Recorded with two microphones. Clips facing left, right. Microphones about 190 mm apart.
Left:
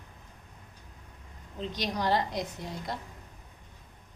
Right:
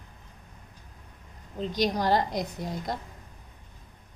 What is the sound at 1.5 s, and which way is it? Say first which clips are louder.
A woman's voice: right 6 dB; 40° right (ahead or behind).